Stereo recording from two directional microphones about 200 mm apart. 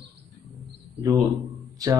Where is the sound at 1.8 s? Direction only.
20° right (ahead or behind).